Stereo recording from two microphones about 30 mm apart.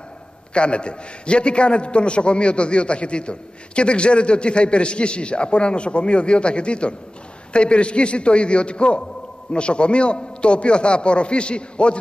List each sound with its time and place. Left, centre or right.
0.6 s a man's voice: left